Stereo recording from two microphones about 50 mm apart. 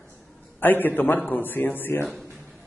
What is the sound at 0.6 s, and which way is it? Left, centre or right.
A man's voice, left.